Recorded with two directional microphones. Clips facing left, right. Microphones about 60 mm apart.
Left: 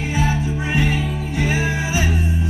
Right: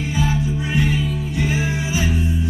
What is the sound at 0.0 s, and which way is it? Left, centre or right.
Music, left.